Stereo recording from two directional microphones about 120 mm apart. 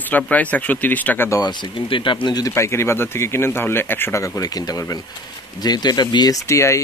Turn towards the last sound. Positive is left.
turn(degrees=25)  # may be behind; listen again after turning